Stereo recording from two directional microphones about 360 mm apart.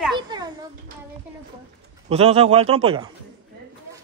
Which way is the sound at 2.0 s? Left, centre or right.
Centre.